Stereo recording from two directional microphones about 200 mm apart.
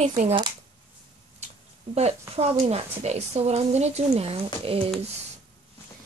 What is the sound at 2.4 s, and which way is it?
Speech, 30° right (ahead or behind).